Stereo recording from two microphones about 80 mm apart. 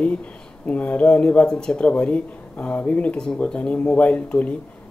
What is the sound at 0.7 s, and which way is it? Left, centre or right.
Speech, centre.